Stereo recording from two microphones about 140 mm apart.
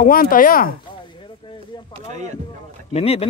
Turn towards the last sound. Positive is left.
turn(degrees=45)  # may be behind; listen again after turning